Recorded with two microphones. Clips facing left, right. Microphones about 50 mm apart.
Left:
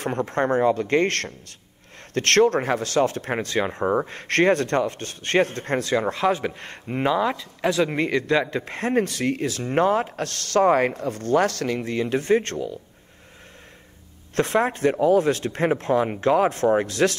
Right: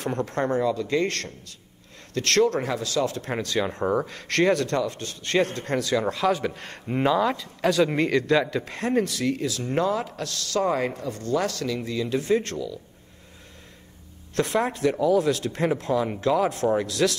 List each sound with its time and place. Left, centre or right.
0.0 s a man's voice: left
6.2 s a man's voice: left
6.9 s speech: centre
8.6 s speech: left
14.3 s speech: left